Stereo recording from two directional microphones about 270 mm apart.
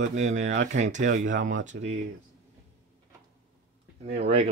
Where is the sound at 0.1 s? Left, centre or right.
Right.